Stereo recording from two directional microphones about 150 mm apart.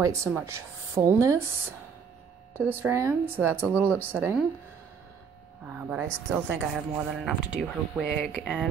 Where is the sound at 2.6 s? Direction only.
15° right (ahead or behind).